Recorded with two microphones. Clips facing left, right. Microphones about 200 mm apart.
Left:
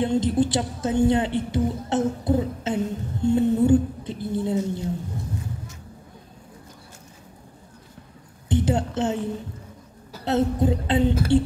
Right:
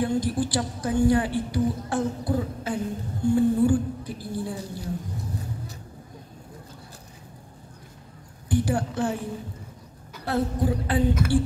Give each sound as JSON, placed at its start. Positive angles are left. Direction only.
{"t": 0.0, "sound": "a woman's voice", "side_deg": 25}
{"t": 8.5, "sound": "a woman's voice", "side_deg": 20}